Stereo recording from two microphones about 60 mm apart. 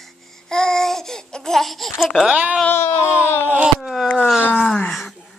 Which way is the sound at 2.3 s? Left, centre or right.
Right.